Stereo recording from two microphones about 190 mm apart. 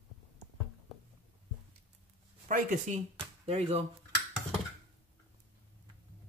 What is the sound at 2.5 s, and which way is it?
Speech, 40° right (ahead or behind).